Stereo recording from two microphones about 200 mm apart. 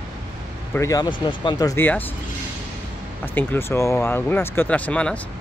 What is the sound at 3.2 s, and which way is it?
Speech, 10° left (ahead or behind).